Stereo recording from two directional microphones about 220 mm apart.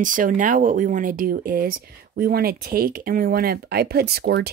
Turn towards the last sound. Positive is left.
turn(degrees=-45)  # may be behind; listen again after turning